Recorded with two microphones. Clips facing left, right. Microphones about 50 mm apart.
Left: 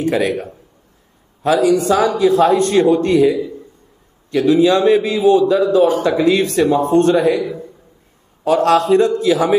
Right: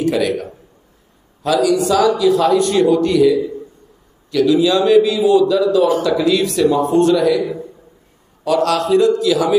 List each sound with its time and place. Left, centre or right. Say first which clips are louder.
0.0 s a man's voice: even; left
8.5 s a man's voice: left 3 dB; left